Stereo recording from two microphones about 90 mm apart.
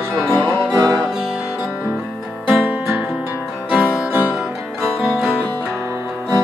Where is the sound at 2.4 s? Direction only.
20° right (ahead or behind).